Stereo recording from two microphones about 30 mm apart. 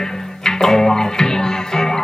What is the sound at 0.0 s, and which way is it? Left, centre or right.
Music, centre.